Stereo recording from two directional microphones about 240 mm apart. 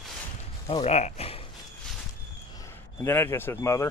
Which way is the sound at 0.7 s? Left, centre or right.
Left.